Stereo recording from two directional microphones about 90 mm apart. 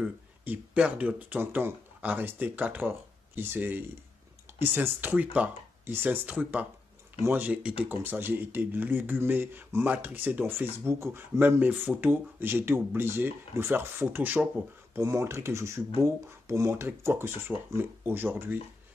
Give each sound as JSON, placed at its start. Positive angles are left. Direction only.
{"t": 0.7, "sound": "speech", "side_deg": -15}
{"t": 15.0, "sound": "speech", "side_deg": -30}